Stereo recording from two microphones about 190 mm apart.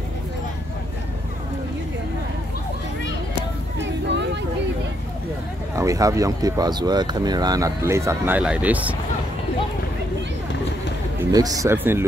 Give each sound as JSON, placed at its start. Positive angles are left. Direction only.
{"t": 5.8, "sound": "speech", "side_deg": -15}
{"t": 11.1, "sound": "speech", "side_deg": -20}